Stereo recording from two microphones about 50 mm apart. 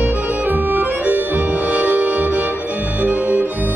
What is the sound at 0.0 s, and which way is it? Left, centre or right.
Music, right.